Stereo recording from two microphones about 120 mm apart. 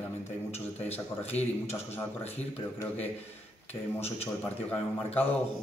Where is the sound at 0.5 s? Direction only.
60° left (ahead or behind).